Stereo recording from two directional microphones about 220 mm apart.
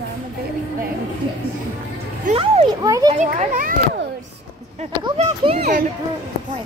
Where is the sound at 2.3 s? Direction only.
30° right (ahead or behind).